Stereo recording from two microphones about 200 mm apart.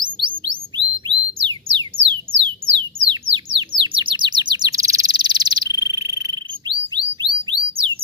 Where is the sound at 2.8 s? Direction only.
25° right (ahead or behind).